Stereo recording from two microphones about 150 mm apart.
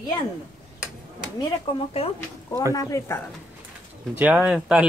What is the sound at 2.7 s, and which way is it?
Speech, 20° left (ahead or behind).